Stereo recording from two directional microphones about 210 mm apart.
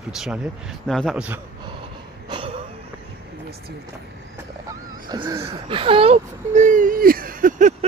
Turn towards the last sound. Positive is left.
turn(degrees=-40)  # may be behind; listen again after turning